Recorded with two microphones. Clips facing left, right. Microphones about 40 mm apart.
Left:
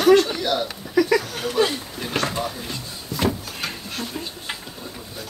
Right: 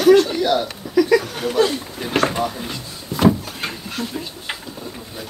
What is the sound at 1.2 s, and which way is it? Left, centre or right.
Chuckle, centre.